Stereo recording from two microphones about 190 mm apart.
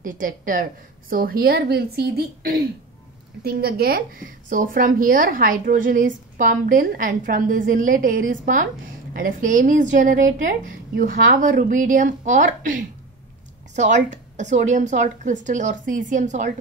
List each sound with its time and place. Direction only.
0.0 s a woman's voice: 45° right (ahead or behind)